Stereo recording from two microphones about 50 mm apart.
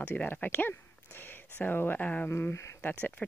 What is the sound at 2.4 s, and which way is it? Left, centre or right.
Speech, left.